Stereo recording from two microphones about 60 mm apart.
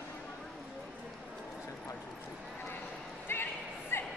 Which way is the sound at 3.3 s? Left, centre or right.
Left.